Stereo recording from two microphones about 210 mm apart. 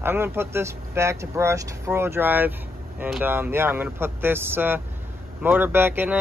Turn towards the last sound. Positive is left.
turn(degrees=-10)  # may be behind; listen again after turning